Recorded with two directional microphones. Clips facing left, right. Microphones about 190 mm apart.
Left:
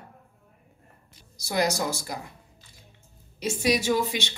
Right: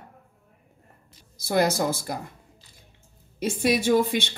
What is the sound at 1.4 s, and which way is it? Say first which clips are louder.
Speech: right 3 dB; 55° right (ahead or behind).